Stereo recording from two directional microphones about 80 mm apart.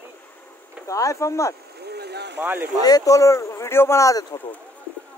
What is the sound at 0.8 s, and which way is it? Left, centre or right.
Speech, left.